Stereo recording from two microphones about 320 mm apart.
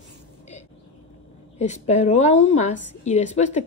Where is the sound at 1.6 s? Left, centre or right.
Left.